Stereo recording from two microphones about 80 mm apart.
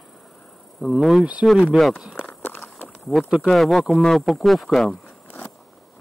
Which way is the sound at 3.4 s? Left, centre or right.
Centre.